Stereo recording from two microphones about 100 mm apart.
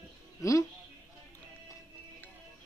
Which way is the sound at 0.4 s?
30° left (ahead or behind).